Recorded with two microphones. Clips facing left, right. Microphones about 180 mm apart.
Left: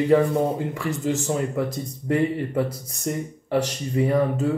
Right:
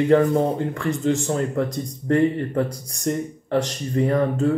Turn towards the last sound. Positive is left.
turn(degrees=5)  # may be behind; listen again after turning